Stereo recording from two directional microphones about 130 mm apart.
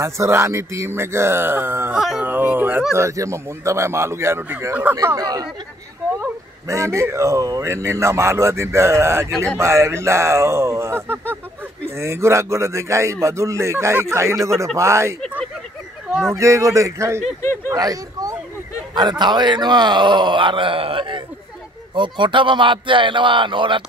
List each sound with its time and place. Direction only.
0.0 s speech: 20° right (ahead or behind)
2.0 s speech: centre (ahead or behind)
2.2 s speech: 15° right (ahead or behind)
4.9 s speech: 30° right (ahead or behind)
6.7 s speech: 25° right (ahead or behind)
15.2 s a sound: 10° left (ahead or behind)
16.1 s a sound: 5° right (ahead or behind)
16.3 s speech: 25° right (ahead or behind); by 23.8 s 40° right (ahead or behind)